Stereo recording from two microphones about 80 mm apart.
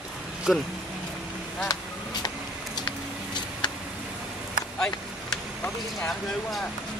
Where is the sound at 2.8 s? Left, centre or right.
Left.